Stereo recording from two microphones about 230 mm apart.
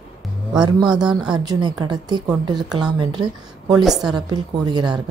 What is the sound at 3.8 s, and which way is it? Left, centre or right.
Speech, centre.